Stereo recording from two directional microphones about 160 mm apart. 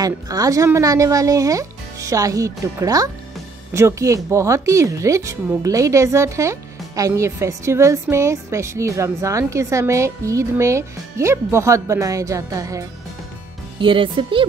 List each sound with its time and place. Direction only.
0.0 s speech: 20° right (ahead or behind)
13.7 s speech: 30° right (ahead or behind)